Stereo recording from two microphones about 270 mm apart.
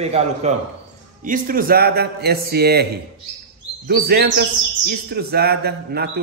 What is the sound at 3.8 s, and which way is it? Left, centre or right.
A man's voice, right.